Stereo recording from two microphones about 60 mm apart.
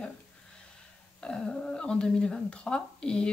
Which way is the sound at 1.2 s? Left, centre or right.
Centre.